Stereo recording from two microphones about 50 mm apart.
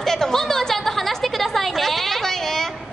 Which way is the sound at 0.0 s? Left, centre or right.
Centre.